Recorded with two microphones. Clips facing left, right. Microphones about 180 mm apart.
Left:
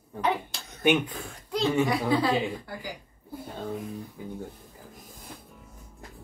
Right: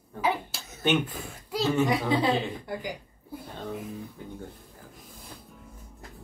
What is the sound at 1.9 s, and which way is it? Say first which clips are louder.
A woman's voice: even; 20° right (ahead or behind).